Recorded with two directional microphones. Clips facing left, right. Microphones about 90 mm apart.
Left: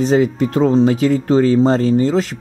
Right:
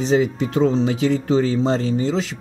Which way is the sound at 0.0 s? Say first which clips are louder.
Left 4 dB; 50° left (ahead or behind).